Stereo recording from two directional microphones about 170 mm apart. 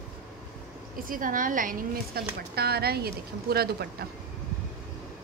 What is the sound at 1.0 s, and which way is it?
Speech, 55° right (ahead or behind).